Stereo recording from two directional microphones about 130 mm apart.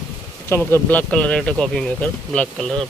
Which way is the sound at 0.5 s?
15° left (ahead or behind).